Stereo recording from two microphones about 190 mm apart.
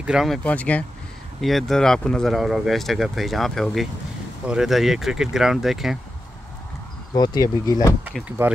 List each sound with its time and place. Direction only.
0.0 s speech: centre (ahead or behind)
7.2 s speech: 20° left (ahead or behind)
8.4 s speech: 10° right (ahead or behind)